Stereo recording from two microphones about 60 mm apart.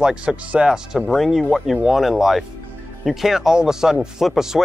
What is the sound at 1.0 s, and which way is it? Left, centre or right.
Speech, centre.